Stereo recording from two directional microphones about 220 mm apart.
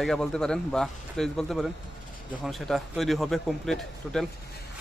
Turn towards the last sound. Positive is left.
turn(degrees=0)  # may be behind; listen again after turning